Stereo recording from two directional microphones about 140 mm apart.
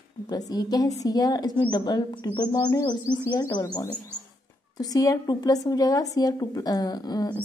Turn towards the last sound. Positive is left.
turn(degrees=30)  # may be behind; listen again after turning